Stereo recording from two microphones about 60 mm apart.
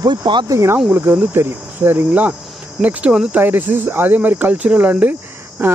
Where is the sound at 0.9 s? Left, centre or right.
Right.